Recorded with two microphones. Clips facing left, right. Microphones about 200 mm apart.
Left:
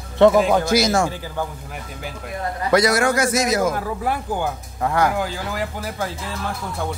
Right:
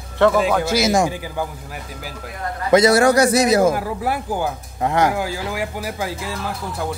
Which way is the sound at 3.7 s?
10° right (ahead or behind).